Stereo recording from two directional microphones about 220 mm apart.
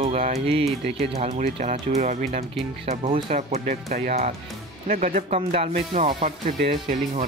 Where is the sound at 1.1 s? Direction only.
30° right (ahead or behind).